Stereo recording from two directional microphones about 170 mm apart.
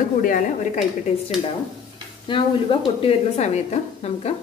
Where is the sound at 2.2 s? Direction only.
30° left (ahead or behind).